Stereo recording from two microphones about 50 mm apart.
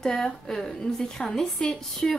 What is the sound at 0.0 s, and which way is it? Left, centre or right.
A woman's voice, centre.